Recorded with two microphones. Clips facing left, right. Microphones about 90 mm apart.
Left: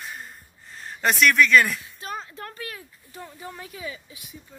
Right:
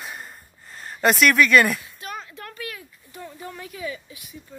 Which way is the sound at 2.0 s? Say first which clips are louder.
Left 1 dB; 30° left (ahead or behind).